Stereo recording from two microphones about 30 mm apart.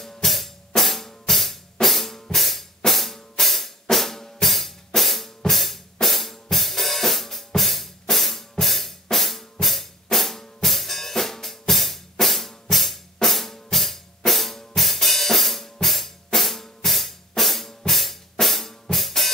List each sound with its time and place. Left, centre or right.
0.0 s drum kit: centre
17.4 s drum: centre